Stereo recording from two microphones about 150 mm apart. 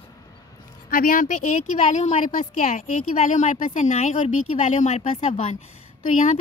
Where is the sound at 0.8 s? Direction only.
70° left (ahead or behind); by 5.6 s 45° left (ahead or behind).